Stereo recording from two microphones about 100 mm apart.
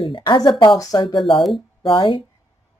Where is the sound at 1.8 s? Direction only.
50° left (ahead or behind).